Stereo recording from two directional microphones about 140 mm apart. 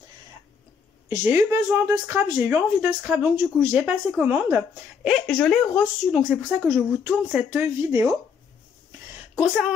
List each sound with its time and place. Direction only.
1.0 s speech: 20° right (ahead or behind)
5.1 s speech: centre (ahead or behind); by 8.1 s 15° right (ahead or behind)